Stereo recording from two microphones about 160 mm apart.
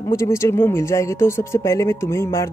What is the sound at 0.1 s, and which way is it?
Speech, 15° left (ahead or behind).